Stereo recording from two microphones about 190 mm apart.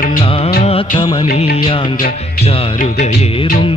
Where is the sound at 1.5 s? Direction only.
30° left (ahead or behind).